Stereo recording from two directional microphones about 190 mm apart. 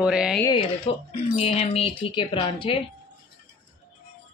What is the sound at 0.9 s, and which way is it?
Speech, 30° left (ahead or behind).